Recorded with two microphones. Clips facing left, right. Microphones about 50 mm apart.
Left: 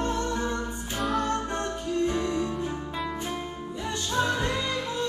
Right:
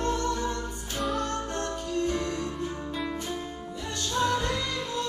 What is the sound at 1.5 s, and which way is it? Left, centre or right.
Music, left.